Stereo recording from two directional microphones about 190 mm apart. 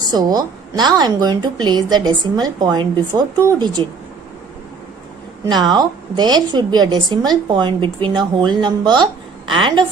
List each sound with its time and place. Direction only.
0.0 s a woman's voice: 20° right (ahead or behind)
5.4 s a woman's voice: 20° right (ahead or behind)